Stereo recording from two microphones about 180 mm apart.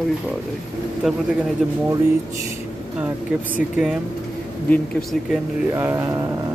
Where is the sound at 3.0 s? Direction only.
10° right (ahead or behind).